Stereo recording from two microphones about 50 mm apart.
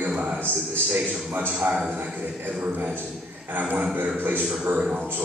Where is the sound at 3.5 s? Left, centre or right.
Right.